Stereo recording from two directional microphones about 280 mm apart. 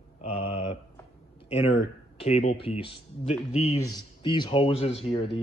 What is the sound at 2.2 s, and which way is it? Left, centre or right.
A man's voice, left.